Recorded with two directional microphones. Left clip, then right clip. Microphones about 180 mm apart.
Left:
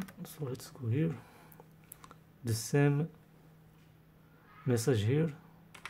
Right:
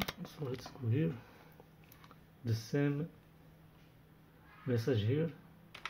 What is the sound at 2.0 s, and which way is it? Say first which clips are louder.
Computer keyboard: left 3 dB; 30° left (ahead or behind).